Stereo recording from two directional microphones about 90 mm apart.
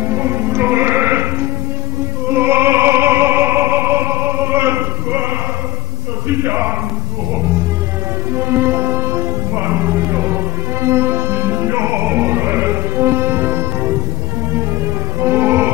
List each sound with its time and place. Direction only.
0.0 s music: 25° right (ahead or behind)
2.2 s opera: 25° right (ahead or behind)
6.2 s a sound: 25° right (ahead or behind)
8.4 s music: 25° right (ahead or behind)
15.1 s music: 25° right (ahead or behind)